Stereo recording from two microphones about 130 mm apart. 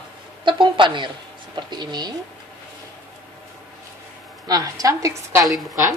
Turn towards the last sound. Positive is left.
turn(degrees=0)  # may be behind; listen again after turning